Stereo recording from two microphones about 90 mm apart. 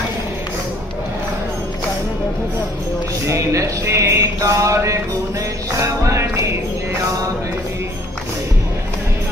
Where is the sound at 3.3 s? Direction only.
35° right (ahead or behind).